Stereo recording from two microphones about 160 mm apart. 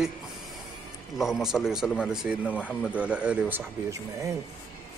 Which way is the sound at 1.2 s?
Centre (ahead or behind).